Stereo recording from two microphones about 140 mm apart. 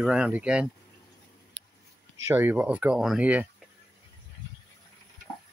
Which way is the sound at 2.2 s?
15° right (ahead or behind).